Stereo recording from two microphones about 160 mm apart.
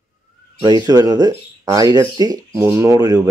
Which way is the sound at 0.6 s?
25° right (ahead or behind).